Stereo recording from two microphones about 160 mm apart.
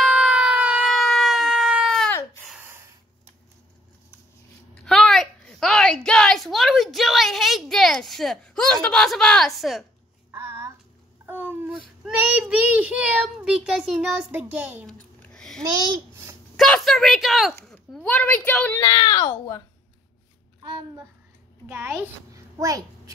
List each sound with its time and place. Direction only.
0.0 s emergency vehicle: 5° right (ahead or behind)
2.6 s a sound: 15° right (ahead or behind)
4.7 s a woman's voice: centre (ahead or behind)
10.3 s a sound: 15° right (ahead or behind)
11.2 s a child's voice: 10° right (ahead or behind)
14.9 s a sound: 5° left (ahead or behind)
15.6 s a child's voice: 25° right (ahead or behind)
16.5 s a woman's voice: centre (ahead or behind)
18.8 s a child's voice: 25° left (ahead or behind)
21.6 s a child's voice: 15° right (ahead or behind)